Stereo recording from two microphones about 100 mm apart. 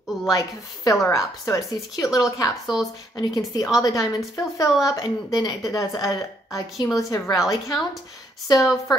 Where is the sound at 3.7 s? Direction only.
35° left (ahead or behind).